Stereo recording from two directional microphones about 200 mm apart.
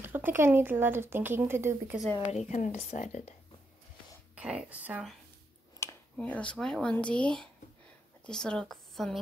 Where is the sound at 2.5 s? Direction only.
35° left (ahead or behind).